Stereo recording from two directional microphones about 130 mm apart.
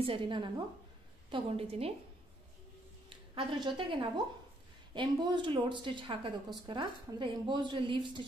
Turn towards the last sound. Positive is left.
turn(degrees=-40)  # may be behind; listen again after turning